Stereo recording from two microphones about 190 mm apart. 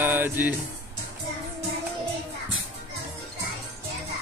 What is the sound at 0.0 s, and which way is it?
Music, 10° right (ahead or behind).